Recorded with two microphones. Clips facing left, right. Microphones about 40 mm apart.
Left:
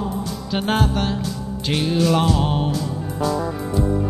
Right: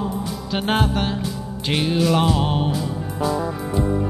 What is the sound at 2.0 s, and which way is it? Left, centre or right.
Music, centre.